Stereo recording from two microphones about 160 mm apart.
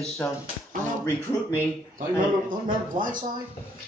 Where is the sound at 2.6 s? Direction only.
60° right (ahead or behind).